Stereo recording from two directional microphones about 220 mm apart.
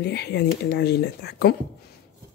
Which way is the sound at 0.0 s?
50° left (ahead or behind).